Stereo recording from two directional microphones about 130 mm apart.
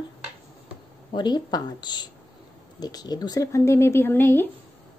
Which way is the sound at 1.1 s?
35° left (ahead or behind).